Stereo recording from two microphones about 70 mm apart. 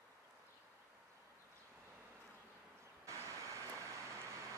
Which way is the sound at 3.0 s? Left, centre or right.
Right.